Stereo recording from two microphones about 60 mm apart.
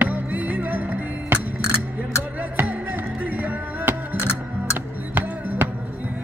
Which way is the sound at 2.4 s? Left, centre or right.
Right.